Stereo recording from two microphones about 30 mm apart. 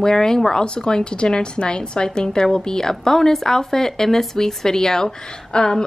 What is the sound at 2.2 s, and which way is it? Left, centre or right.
A woman's voice, left.